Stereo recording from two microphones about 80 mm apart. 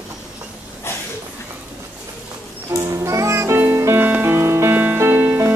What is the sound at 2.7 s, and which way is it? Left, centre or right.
Music, right.